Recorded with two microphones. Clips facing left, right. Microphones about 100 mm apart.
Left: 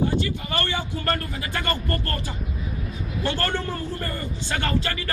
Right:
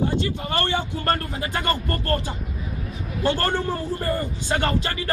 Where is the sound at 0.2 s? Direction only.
30° right (ahead or behind).